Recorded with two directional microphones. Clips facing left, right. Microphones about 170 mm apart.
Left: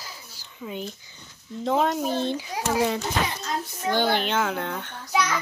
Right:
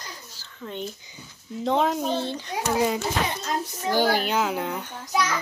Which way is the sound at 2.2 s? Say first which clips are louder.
Left 3 dB; 15° left (ahead or behind).